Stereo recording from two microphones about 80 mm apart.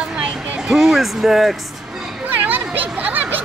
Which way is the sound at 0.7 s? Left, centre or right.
Centre.